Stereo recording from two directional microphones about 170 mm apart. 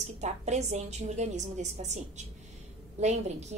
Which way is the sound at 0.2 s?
40° right (ahead or behind).